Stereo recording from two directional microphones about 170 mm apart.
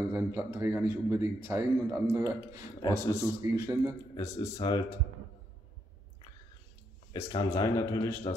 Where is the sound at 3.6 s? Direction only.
20° right (ahead or behind).